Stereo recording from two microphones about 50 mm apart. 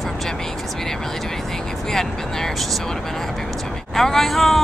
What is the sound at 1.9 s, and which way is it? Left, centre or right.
Speech, centre.